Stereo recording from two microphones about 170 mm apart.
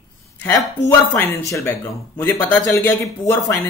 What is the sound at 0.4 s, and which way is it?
Speech, 15° left (ahead or behind).